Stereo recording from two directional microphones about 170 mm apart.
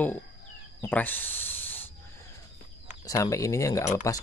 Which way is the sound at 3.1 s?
20° left (ahead or behind).